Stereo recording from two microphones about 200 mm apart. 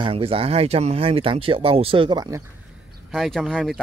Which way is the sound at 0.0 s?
30° right (ahead or behind).